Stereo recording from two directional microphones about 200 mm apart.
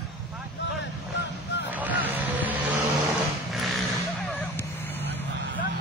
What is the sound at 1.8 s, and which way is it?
Honk, 10° right (ahead or behind).